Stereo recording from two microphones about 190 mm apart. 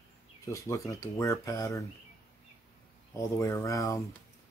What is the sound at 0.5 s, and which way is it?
Speech, 15° left (ahead or behind).